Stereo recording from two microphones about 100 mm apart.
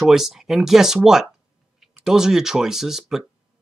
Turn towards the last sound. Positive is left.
turn(degrees=-5)  # may be behind; listen again after turning